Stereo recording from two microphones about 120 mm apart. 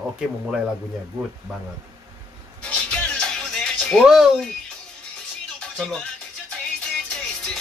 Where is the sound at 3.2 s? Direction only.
5° left (ahead or behind).